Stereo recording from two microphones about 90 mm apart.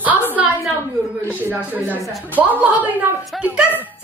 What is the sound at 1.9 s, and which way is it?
A woman's voice, 20° right (ahead or behind).